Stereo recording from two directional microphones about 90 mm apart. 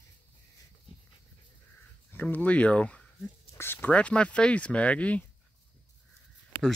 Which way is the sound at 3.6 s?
25° left (ahead or behind).